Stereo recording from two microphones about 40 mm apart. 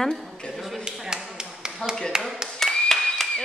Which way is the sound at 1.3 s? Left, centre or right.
Right.